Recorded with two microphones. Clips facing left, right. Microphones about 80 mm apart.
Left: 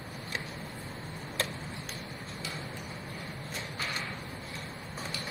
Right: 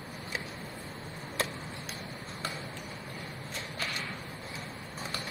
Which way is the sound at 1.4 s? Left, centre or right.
Centre.